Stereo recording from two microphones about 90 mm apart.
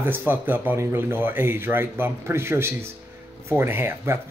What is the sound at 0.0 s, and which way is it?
Speech, 20° right (ahead or behind).